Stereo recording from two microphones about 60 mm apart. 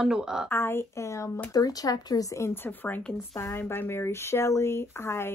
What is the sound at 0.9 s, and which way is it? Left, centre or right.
Speech, left.